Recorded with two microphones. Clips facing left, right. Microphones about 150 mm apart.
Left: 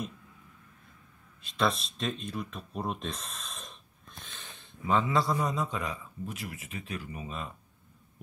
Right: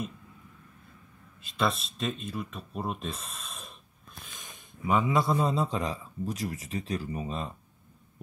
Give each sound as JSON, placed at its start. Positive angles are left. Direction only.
{"t": 1.4, "sound": "a man's voice", "side_deg": 0}